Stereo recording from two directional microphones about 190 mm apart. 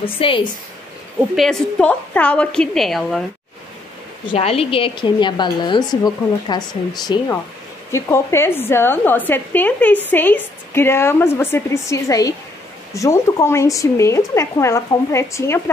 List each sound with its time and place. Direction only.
0.0 s a woman's voice: 25° left (ahead or behind)
1.3 s a woman's voice: centre (ahead or behind)
4.3 s a woman's voice: 30° left (ahead or behind)
7.9 s speech: 15° left (ahead or behind)